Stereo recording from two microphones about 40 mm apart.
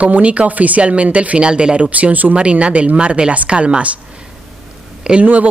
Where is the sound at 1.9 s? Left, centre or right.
Right.